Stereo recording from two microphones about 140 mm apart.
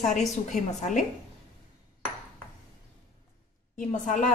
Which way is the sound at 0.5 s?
60° left (ahead or behind).